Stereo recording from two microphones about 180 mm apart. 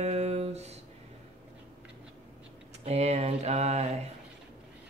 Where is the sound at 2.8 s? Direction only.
35° right (ahead or behind).